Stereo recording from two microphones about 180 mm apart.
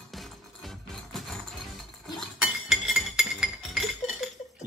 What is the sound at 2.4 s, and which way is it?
Chink, centre (ahead or behind).